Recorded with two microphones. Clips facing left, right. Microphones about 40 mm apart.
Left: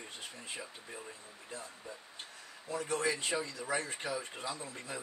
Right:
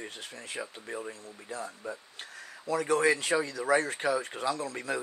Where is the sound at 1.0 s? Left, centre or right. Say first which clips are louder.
Right 8 dB; right.